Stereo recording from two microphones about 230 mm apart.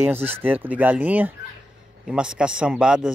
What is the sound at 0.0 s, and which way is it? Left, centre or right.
A man's voice, centre.